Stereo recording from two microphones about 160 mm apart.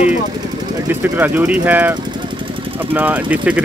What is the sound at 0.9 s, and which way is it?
Speech, 10° right (ahead or behind).